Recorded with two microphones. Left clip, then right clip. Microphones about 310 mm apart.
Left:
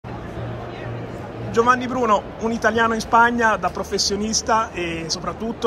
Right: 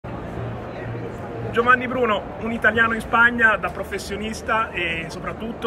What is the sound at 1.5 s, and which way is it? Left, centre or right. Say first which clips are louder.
A man's voice: even; centre.